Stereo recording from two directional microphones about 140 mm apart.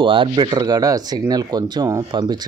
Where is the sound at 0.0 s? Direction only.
35° right (ahead or behind).